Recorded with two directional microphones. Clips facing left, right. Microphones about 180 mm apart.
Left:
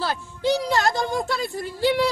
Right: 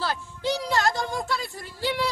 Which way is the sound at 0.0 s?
15° left (ahead or behind).